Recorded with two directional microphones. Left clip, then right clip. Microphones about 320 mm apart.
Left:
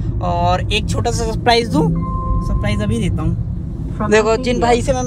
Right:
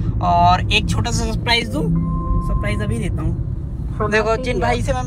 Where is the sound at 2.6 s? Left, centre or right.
Centre.